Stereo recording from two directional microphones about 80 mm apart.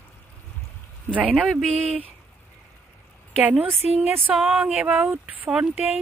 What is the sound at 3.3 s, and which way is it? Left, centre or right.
Speech, centre.